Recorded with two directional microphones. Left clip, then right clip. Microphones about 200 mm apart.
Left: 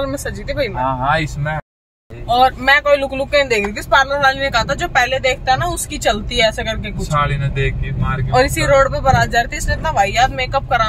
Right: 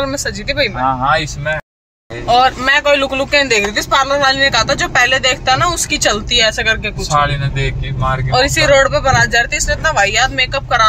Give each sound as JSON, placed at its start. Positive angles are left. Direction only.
{"t": 0.0, "sound": "speech", "side_deg": 0}
{"t": 0.8, "sound": "speech", "side_deg": -50}
{"t": 2.2, "sound": "speech", "side_deg": 5}
{"t": 8.3, "sound": "speech", "side_deg": 5}